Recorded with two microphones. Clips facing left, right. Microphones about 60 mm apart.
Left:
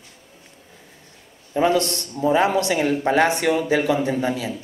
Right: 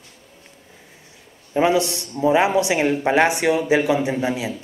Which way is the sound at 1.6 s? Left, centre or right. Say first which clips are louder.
Even; centre.